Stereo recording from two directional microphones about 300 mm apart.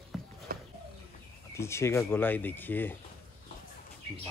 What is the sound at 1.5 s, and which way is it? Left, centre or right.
Speech, centre.